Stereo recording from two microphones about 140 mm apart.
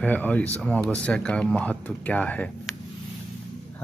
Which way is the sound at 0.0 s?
10° left (ahead or behind).